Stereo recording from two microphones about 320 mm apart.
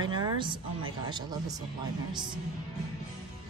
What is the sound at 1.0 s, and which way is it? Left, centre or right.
Speech, centre.